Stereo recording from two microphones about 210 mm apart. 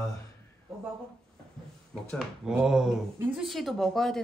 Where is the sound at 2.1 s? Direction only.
5° right (ahead or behind).